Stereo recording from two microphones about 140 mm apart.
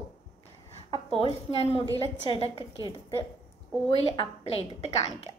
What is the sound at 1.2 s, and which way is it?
A woman's voice, 45° left (ahead or behind).